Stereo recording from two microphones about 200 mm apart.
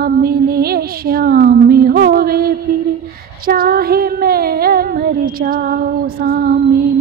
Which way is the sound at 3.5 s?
50° right (ahead or behind).